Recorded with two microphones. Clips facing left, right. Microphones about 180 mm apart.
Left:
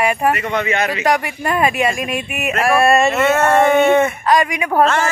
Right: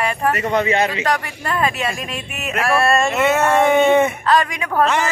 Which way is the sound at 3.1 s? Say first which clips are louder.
Left 2 dB; 15° right (ahead or behind).